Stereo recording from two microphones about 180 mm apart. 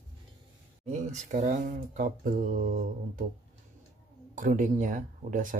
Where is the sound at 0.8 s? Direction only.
40° right (ahead or behind).